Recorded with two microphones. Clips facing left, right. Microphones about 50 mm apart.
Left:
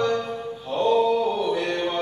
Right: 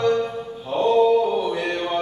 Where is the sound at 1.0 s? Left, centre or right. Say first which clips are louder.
Right 4 dB; centre.